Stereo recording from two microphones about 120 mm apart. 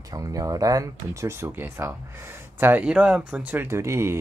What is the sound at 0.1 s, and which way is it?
Speech, 30° right (ahead or behind).